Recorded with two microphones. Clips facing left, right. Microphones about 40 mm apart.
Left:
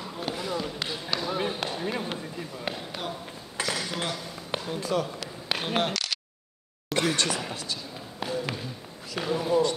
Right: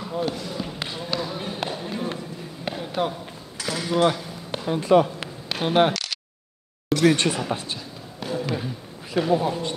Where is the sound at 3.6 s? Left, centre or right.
Left.